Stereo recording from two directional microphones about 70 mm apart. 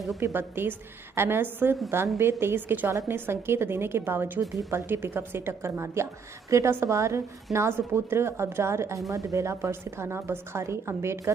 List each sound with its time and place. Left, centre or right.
0.2 s a woman's voice: right
2.9 s a woman's voice: right